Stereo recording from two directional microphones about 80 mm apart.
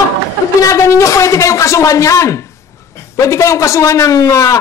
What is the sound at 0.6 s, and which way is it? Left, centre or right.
Speech, left.